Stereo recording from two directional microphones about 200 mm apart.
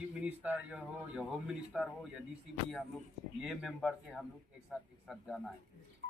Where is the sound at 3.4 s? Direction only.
Centre (ahead or behind).